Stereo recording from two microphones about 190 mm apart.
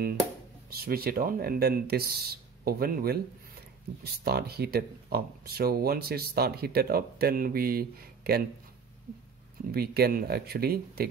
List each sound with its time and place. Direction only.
0.7 s speech: 55° right (ahead or behind)
9.7 s speech: 55° right (ahead or behind)